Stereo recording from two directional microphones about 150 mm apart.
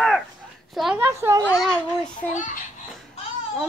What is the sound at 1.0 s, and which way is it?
Speech, 15° right (ahead or behind).